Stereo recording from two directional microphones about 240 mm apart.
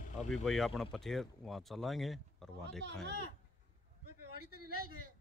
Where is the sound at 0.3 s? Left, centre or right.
Centre.